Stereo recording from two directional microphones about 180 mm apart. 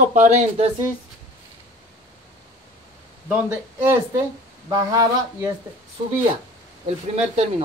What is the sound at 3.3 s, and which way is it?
Speech, 10° right (ahead or behind).